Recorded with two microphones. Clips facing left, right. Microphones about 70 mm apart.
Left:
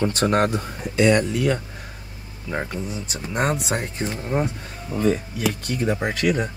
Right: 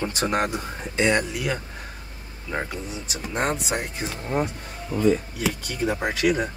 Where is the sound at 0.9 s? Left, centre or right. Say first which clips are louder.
Left 4 dB; right.